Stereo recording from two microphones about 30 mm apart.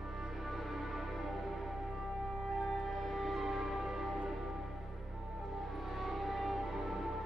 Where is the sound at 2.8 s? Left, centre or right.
Centre.